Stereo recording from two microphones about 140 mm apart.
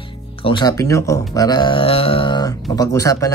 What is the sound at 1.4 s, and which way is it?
Speech, 30° left (ahead or behind).